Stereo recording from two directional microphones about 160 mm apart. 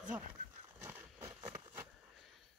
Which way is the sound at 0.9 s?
15° right (ahead or behind).